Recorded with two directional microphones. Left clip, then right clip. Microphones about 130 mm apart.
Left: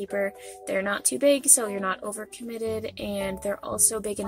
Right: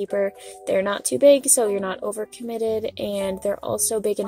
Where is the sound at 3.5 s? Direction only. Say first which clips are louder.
Right 4 dB; 35° right (ahead or behind).